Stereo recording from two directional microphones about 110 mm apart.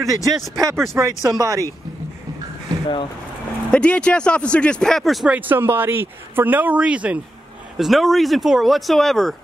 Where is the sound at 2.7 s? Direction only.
35° right (ahead or behind).